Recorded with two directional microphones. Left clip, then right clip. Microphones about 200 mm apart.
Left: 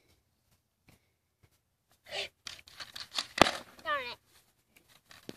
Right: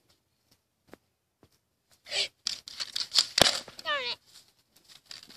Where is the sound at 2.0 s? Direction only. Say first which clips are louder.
Right 8 dB; centre (ahead or behind).